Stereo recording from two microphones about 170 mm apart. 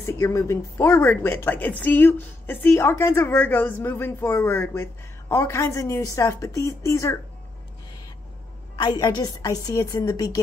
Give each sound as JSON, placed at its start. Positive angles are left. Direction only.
{"t": 0.2, "sound": "a woman's voice", "side_deg": 15}
{"t": 8.7, "sound": "a woman's voice", "side_deg": 25}